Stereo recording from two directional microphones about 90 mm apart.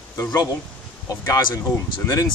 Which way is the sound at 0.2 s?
45° left (ahead or behind).